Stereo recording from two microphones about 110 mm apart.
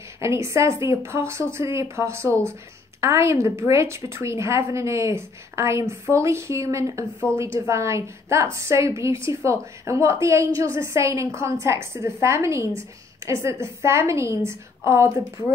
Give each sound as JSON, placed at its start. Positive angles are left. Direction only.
{"t": 0.2, "sound": "a woman's voice", "side_deg": -25}